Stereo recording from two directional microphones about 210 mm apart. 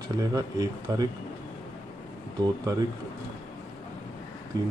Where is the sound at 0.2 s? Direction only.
15° right (ahead or behind).